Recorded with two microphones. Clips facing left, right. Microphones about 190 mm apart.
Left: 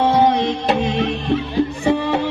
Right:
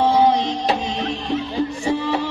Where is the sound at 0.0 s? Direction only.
60° left (ahead or behind).